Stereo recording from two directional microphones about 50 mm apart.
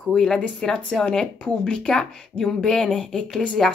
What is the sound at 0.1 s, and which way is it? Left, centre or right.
A woman's voice, centre.